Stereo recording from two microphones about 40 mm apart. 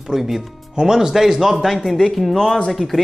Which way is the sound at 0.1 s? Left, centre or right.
Centre.